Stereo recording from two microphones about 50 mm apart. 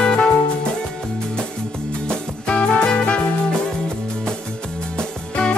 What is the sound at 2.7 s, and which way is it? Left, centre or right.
Music, left.